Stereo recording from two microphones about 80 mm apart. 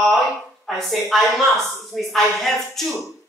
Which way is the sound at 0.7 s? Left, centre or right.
Centre.